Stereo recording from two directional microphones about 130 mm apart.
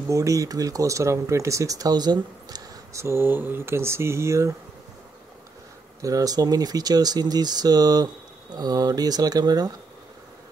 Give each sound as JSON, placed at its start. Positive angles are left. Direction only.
{"t": 0.1, "sound": "speech", "side_deg": -25}
{"t": 6.0, "sound": "speech", "side_deg": -25}